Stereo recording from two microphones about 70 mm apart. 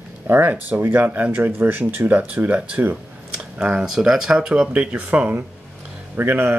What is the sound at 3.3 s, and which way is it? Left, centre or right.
Speech, centre.